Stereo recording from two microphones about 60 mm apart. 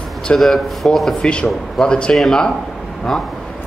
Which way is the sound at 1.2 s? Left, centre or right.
Centre.